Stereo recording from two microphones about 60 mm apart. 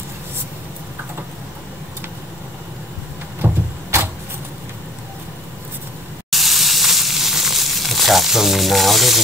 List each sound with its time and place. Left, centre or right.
3.4 s vehicle: right
6.3 s sizzle: centre